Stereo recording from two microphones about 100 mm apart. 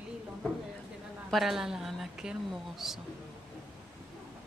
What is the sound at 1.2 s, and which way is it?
A woman's voice, centre (ahead or behind).